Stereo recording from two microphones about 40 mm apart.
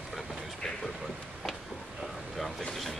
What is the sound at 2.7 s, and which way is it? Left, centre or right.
Speech, centre.